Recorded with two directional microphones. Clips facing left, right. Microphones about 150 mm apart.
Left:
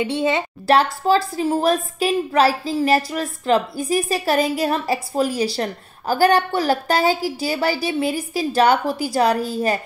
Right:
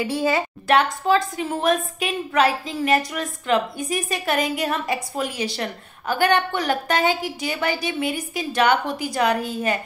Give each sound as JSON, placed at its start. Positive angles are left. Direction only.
{"t": 0.0, "sound": "a woman's voice", "side_deg": 25}